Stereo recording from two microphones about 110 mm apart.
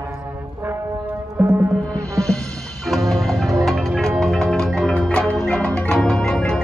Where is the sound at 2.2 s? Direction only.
5° left (ahead or behind).